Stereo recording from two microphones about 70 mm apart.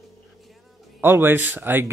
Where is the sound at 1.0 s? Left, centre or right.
Right.